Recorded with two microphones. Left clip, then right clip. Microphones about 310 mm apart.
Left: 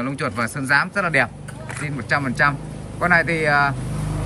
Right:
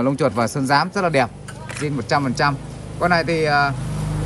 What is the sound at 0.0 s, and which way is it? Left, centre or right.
Speech, centre.